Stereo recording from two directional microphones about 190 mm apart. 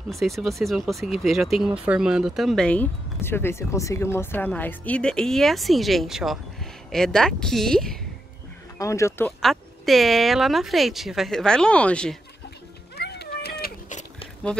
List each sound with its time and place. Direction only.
0.1 s speech: centre (ahead or behind)
8.7 s speech: 15° left (ahead or behind)
9.4 s speech: centre (ahead or behind)
12.9 s cat: 60° left (ahead or behind); by 14.3 s 40° left (ahead or behind)